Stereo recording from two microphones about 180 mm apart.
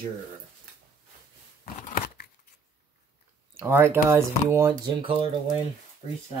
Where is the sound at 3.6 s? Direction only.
15° right (ahead or behind).